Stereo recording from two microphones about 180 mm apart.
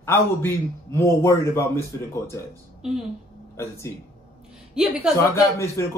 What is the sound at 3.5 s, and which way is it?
Speech, 15° left (ahead or behind).